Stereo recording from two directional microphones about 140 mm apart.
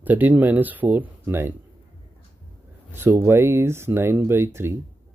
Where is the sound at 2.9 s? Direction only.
15° right (ahead or behind).